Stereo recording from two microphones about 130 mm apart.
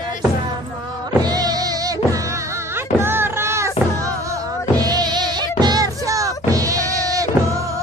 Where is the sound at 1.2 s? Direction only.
30° right (ahead or behind).